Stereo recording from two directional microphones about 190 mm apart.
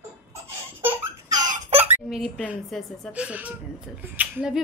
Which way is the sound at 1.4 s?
40° right (ahead or behind).